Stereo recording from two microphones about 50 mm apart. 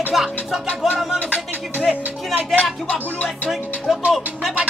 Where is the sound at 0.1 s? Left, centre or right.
Centre.